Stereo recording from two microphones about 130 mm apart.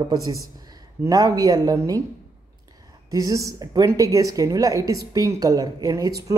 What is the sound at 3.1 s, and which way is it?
Speech, 25° right (ahead or behind).